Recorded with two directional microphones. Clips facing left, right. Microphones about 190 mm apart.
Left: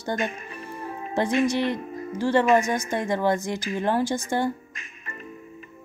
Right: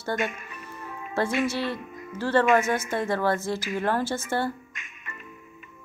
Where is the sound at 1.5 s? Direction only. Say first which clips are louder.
Left 5 dB; 15° left (ahead or behind).